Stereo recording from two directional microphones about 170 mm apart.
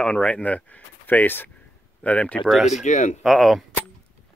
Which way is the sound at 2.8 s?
45° left (ahead or behind).